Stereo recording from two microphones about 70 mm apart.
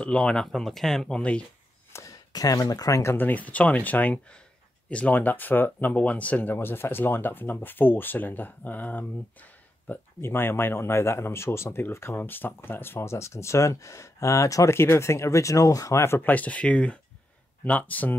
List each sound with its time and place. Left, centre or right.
0.0 s speech: centre
1.9 s a sound: left
2.3 s speech: left
3.2 s speech: left
6.5 s speech: left
10.2 s speech: left
16.0 s speech: left
16.3 s speech: left